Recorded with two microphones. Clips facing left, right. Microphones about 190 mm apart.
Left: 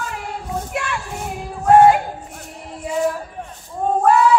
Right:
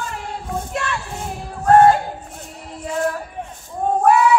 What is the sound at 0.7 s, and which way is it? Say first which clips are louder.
Child singing: right 1 dB; 10° left (ahead or behind).